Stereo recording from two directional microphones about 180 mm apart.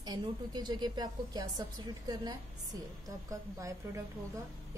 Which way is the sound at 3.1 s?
20° right (ahead or behind).